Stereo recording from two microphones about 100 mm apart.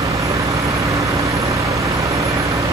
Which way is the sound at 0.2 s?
30° right (ahead or behind).